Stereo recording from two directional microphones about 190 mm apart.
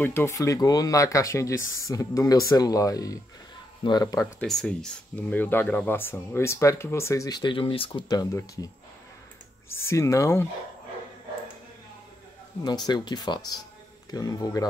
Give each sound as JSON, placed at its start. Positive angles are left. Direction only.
{"t": 0.0, "sound": "speech", "side_deg": 10}
{"t": 4.4, "sound": "speech", "side_deg": 5}
{"t": 9.8, "sound": "speech", "side_deg": 15}
{"t": 12.6, "sound": "speech", "side_deg": 20}